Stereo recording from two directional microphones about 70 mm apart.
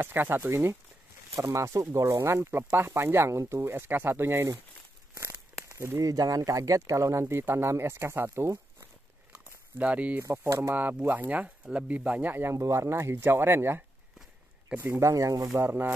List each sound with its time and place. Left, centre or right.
0.0 s speech: right
5.9 s speech: right
9.3 s a sound: right
10.2 s speech: right
12.5 s speech: right
15.0 s speech: right